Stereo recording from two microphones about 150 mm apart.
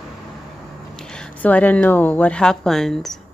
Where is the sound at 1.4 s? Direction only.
10° left (ahead or behind).